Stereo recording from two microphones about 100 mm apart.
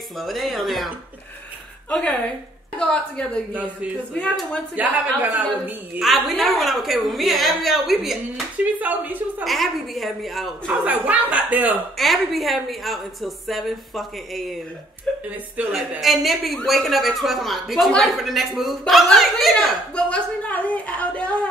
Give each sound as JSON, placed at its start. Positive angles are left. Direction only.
{"t": 0.2, "sound": "a woman's voice", "side_deg": 0}
{"t": 1.9, "sound": "a woman's voice", "side_deg": 10}
{"t": 3.5, "sound": "a woman's voice", "side_deg": -15}
{"t": 4.1, "sound": "a woman's voice", "side_deg": 10}
{"t": 4.7, "sound": "a woman's voice", "side_deg": -15}
{"t": 5.9, "sound": "a woman's voice", "side_deg": 0}
{"t": 8.7, "sound": "a woman's voice", "side_deg": -15}
{"t": 9.4, "sound": "a woman's voice", "side_deg": 0}
{"t": 10.8, "sound": "a woman's voice", "side_deg": -15}
{"t": 12.0, "sound": "a woman's voice", "side_deg": 0}
{"t": 15.2, "sound": "a woman's voice", "side_deg": -15}
{"t": 16.0, "sound": "a woman's voice", "side_deg": 0}